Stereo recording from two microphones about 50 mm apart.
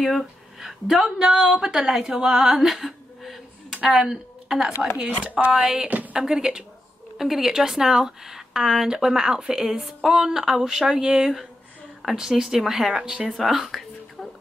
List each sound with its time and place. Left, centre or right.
0.0 s speech: centre
1.3 s a woman's voice: centre
1.6 s a woman's voice: centre
5.5 s speech: centre
5.9 s speech: right
6.1 s speech: centre
13.4 s whispering: centre